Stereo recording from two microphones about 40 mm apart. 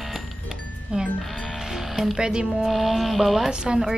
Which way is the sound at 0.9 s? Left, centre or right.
Right.